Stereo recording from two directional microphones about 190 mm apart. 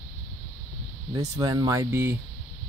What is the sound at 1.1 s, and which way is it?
Speech, 20° right (ahead or behind).